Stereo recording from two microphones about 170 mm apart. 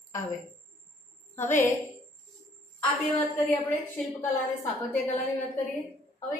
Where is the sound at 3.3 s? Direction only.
10° left (ahead or behind).